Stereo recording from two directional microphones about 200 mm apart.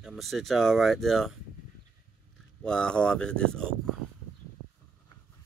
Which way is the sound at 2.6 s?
5° left (ahead or behind).